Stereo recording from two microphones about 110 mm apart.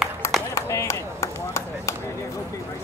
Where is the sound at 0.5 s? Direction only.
25° left (ahead or behind).